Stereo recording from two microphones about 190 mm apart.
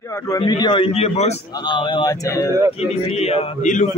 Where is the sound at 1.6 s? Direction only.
25° left (ahead or behind).